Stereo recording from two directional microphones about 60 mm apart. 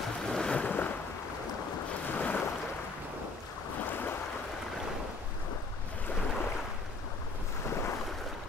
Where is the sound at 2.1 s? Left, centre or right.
Left.